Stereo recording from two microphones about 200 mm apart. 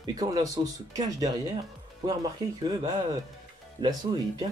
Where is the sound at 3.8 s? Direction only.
20° right (ahead or behind).